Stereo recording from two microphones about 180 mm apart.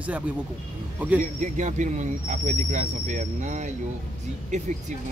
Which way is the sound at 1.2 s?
40° right (ahead or behind).